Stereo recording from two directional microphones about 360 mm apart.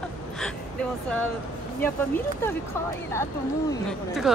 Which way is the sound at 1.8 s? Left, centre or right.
Centre.